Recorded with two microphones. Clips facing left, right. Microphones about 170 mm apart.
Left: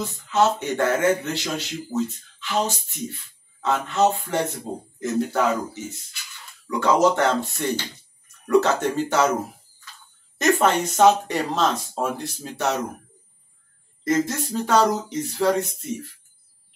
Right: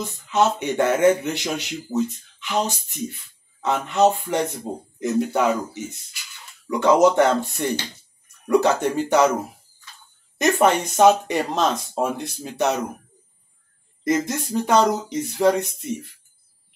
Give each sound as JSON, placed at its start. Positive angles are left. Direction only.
{"t": 0.3, "sound": "speech", "side_deg": -20}
{"t": 10.3, "sound": "speech", "side_deg": -15}
{"t": 14.0, "sound": "speech", "side_deg": -15}